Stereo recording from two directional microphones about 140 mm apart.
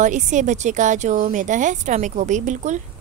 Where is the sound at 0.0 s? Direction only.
60° right (ahead or behind).